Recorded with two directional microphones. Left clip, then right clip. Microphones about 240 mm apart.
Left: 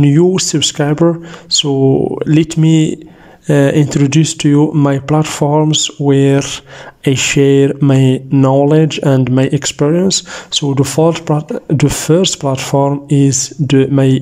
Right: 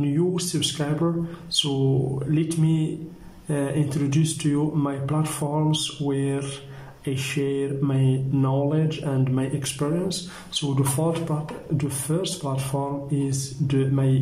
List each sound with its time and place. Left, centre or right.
0.0 s speech: left